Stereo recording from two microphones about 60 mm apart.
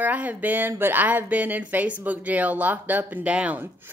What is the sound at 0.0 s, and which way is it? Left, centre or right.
A woman's voice, right.